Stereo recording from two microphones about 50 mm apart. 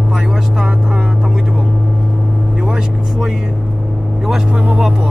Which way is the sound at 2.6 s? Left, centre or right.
Centre.